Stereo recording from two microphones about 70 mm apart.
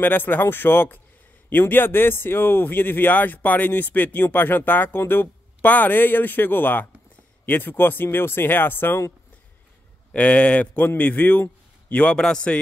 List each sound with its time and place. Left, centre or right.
0.0 s speech: left
10.1 s speech: centre